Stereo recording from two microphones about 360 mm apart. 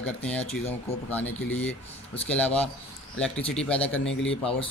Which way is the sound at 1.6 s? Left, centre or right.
Centre.